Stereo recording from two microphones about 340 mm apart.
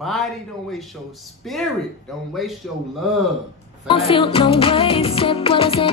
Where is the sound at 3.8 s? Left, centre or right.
Centre.